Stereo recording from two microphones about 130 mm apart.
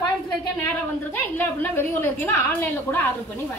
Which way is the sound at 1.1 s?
15° left (ahead or behind).